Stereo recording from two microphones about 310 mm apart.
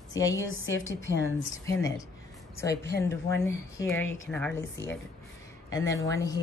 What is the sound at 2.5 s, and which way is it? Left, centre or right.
Speech, centre.